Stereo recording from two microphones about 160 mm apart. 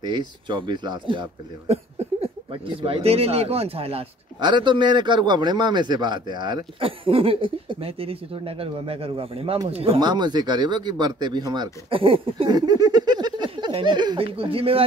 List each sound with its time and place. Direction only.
0.0 s speech: 30° right (ahead or behind)